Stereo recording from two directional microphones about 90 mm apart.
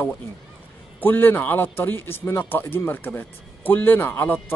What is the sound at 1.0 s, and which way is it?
Speech, 20° left (ahead or behind).